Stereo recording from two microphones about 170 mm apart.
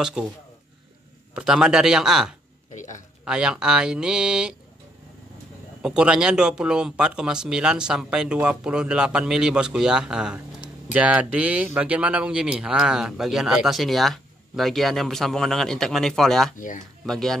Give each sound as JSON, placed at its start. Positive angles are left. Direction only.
{"t": 0.2, "sound": "speech", "side_deg": -5}
{"t": 2.7, "sound": "a sound", "side_deg": 45}
{"t": 3.3, "sound": "speech", "side_deg": -5}
{"t": 5.8, "sound": "speech", "side_deg": -5}
{"t": 16.5, "sound": "speech", "side_deg": 50}
{"t": 17.0, "sound": "speech", "side_deg": 0}